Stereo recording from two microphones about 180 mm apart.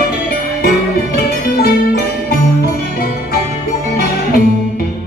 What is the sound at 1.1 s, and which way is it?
Music, 60° left (ahead or behind).